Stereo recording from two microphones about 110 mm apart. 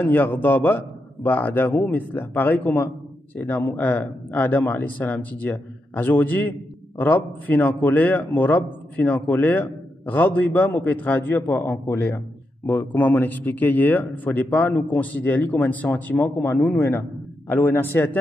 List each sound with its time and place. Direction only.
0.0 s a man's voice: 20° left (ahead or behind)